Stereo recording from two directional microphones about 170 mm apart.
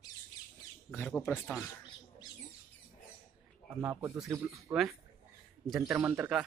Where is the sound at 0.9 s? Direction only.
5° left (ahead or behind).